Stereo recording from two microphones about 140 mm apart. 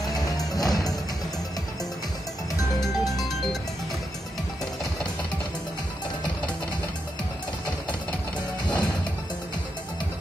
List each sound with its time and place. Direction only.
0.1 s music: 25° left (ahead or behind)
2.8 s music: centre (ahead or behind)
8.6 s music: 30° left (ahead or behind)